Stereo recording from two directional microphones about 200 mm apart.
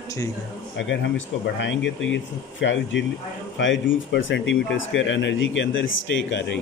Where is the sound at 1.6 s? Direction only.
65° left (ahead or behind).